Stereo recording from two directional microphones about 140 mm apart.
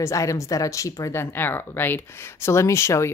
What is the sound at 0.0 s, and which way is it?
Speech, 20° left (ahead or behind).